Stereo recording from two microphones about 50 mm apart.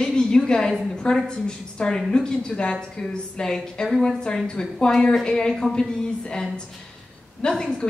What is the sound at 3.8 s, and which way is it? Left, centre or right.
A woman's voice, centre.